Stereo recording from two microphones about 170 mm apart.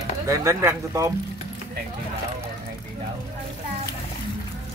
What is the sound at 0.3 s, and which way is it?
Speech, 20° right (ahead or behind).